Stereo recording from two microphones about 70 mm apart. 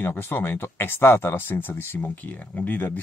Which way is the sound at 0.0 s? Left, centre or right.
Left.